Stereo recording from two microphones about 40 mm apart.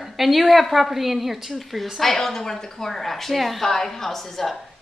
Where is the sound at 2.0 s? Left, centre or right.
Centre.